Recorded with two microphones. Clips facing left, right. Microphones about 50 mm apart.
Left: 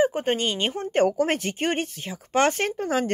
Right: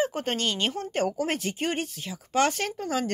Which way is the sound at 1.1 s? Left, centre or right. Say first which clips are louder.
Left 5 dB; left.